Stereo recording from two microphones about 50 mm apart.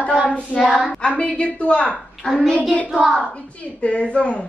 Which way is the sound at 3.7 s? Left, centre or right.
Left.